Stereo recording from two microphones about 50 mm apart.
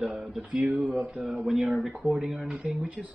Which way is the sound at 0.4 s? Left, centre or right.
Right.